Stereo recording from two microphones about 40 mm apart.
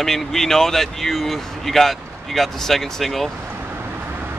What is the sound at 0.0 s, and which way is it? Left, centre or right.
Speech, centre.